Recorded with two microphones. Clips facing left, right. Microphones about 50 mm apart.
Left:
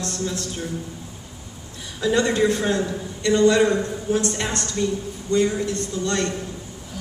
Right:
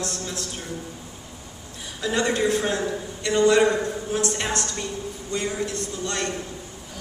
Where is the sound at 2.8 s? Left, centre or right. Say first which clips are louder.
Left 3 dB; centre.